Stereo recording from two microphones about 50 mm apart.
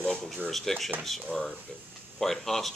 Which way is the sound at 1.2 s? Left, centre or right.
Centre.